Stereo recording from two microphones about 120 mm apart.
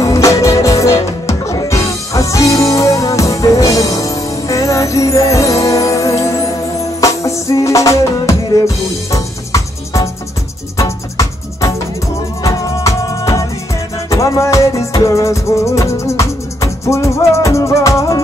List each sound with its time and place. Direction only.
0.0 s music: 25° left (ahead or behind)